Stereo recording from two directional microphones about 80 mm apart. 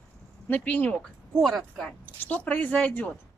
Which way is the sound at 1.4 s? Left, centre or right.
Centre.